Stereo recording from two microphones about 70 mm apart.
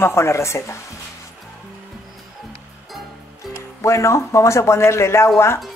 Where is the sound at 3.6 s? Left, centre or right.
Left.